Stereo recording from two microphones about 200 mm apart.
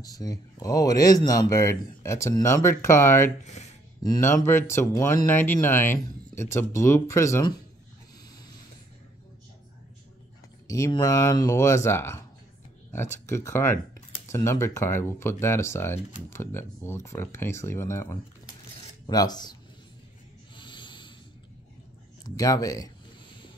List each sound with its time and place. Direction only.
0.0 s speech: 20° left (ahead or behind)
10.7 s speech: 20° left (ahead or behind)
20.5 s a sound: 25° left (ahead or behind)
22.4 s speech: 15° left (ahead or behind)